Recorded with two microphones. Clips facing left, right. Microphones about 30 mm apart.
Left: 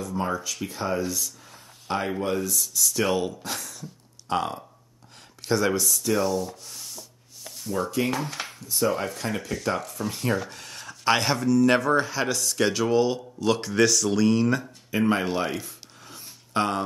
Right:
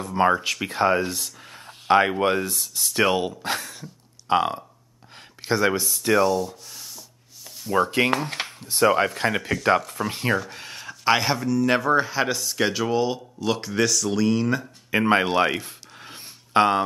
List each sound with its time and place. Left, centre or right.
0.0 s speech: right
3.8 s a sound: right
5.4 s speech: right
6.2 s rub: centre
7.7 s speech: right
10.8 s speech: centre
14.9 s a sound: right